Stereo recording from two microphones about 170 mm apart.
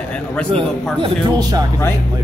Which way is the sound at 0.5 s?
25° right (ahead or behind).